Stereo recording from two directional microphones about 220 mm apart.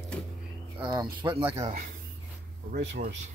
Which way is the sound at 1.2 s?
10° right (ahead or behind).